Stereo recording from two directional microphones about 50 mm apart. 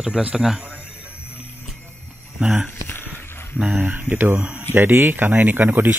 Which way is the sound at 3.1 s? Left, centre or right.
Right.